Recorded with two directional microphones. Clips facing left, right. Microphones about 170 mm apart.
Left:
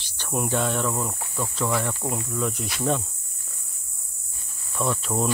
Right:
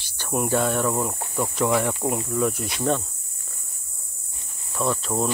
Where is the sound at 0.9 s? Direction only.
15° right (ahead or behind).